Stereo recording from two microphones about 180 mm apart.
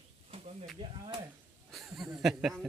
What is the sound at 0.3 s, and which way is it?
Snake, 35° right (ahead or behind).